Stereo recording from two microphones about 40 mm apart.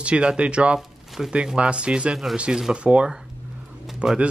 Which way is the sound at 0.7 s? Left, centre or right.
Centre.